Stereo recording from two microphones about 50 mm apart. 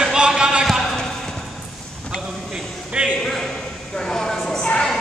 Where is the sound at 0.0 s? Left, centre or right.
Centre.